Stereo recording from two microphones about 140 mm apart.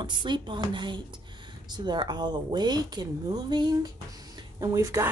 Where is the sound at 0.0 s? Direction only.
35° right (ahead or behind).